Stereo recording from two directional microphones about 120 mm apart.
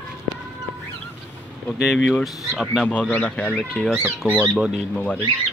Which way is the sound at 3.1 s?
10° left (ahead or behind).